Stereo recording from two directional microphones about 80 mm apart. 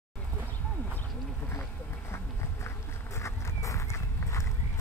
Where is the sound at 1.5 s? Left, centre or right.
Left.